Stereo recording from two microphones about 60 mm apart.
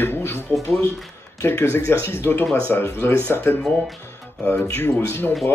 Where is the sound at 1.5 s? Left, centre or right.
Left.